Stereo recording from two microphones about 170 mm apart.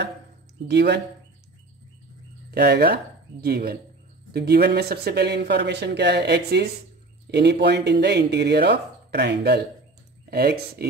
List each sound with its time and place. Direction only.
0.7 s speech: 85° right
2.5 s speech: 75° right (ahead or behind)